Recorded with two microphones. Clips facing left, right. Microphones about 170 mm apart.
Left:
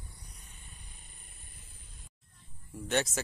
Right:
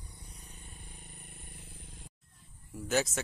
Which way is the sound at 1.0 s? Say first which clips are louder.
Right 7 dB; 60° right (ahead or behind).